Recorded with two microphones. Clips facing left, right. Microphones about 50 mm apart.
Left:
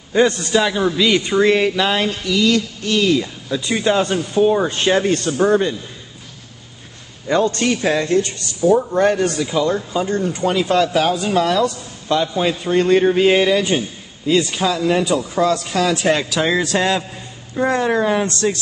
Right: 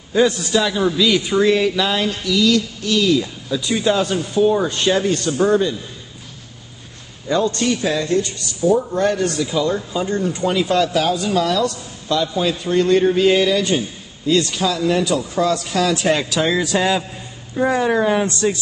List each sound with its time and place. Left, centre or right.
0.5 s a man's voice: centre
3.2 s a man's voice: centre
5.4 s a man's voice: left
7.2 s a man's voice: left; by 10.1 s centre
10.3 s a man's voice: left; by 18.2 s centre
18.2 s speech: centre